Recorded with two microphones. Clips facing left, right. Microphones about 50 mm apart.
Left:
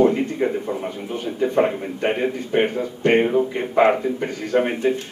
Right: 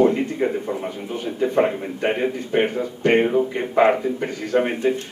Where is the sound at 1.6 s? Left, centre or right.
Centre.